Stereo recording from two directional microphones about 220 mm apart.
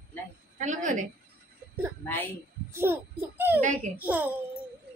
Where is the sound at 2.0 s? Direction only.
10° left (ahead or behind).